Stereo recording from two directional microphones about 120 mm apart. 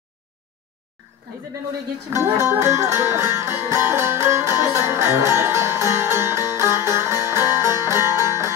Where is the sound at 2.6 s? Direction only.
20° right (ahead or behind).